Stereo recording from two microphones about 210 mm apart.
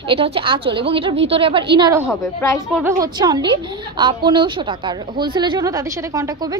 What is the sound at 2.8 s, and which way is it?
A woman's voice, 20° right (ahead or behind).